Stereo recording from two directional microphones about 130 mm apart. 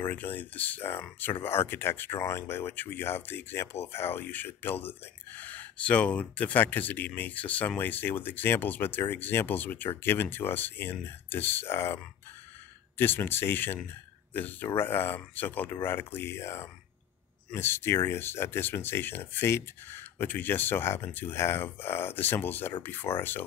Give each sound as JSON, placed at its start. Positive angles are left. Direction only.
{"t": 0.0, "sound": "speech", "side_deg": 15}